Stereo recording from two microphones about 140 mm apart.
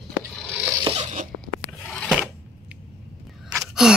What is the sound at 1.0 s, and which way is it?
Zipper, 60° right (ahead or behind).